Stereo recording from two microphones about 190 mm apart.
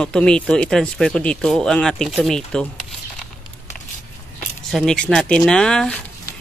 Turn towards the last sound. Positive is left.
turn(degrees=5)  # may be behind; listen again after turning